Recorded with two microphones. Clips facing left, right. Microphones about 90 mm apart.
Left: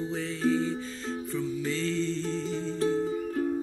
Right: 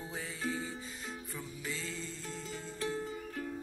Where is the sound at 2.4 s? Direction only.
90° left.